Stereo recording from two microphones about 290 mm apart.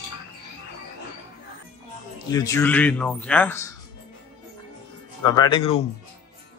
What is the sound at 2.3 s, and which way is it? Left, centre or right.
Speech, centre.